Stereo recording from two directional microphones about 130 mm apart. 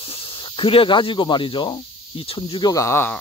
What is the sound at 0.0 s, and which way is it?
Speech, 45° left (ahead or behind).